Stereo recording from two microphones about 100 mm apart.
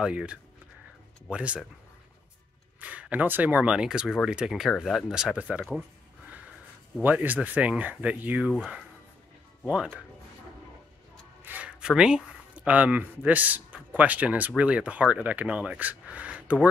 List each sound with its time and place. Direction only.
0.0 s speech: 10° right (ahead or behind)
2.8 s speech: 15° right (ahead or behind)
7.0 s speech: 20° right (ahead or behind)
8.5 s speech: 5° right (ahead or behind)
11.4 s speech: 15° right (ahead or behind)